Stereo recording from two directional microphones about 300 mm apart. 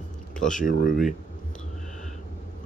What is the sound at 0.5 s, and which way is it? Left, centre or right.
Speech, left.